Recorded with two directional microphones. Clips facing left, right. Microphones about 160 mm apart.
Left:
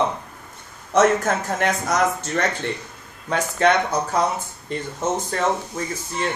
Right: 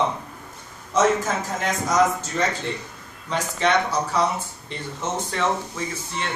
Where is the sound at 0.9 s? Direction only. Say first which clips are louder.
Left 3 dB; 65° left (ahead or behind).